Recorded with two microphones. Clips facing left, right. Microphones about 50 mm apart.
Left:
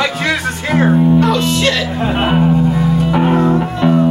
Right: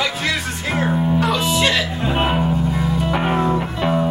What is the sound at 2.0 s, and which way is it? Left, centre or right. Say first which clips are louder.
Speech: left 8 dB; centre.